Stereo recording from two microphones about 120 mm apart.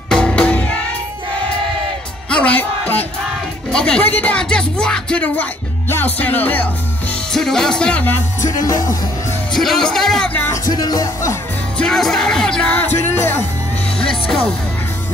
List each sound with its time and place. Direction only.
0.1 s music: 10° left (ahead or behind)
2.2 s speech: 10° left (ahead or behind)
3.7 s speech: 5° left (ahead or behind)
7.3 s speech: 5° left (ahead or behind)
8.5 s music: 30° left (ahead or behind)
9.5 s speech: 5° left (ahead or behind)
10.5 s speech: 30° left (ahead or behind)
11.8 s speech: 5° left (ahead or behind)